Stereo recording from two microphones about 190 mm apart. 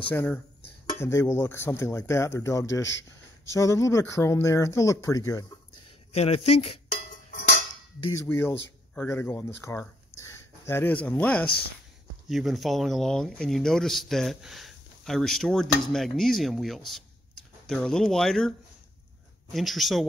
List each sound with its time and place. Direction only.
0.0 s speech: 10° left (ahead or behind)
6.1 s speech: 35° left (ahead or behind)
7.3 s a sound: 65° left (ahead or behind)
8.1 s speech: 15° left (ahead or behind)
19.5 s speech: centre (ahead or behind)